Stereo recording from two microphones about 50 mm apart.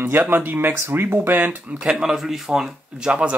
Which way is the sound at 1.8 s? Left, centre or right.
Centre.